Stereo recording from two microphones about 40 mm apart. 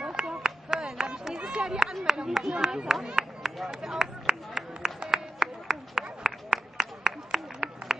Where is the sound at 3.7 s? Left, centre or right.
Centre.